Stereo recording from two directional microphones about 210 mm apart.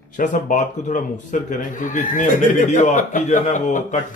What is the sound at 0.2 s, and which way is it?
A man's voice, 35° left (ahead or behind).